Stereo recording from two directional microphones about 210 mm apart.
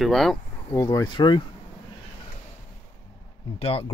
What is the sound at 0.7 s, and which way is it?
Speech, 15° left (ahead or behind).